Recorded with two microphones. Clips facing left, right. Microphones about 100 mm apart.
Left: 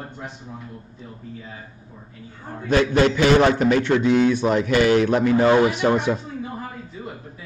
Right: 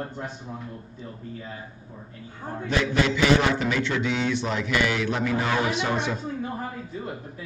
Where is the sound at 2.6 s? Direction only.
50° left (ahead or behind).